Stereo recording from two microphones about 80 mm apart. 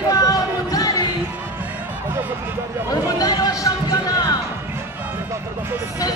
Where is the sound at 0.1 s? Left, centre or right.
Left.